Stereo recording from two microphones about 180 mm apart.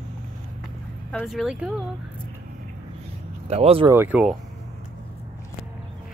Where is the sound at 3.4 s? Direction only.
35° right (ahead or behind).